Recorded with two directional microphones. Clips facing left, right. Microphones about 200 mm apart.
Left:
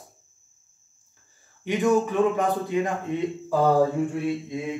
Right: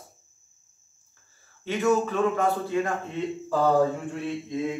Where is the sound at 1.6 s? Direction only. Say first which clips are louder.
Left 2 dB; 15° left (ahead or behind).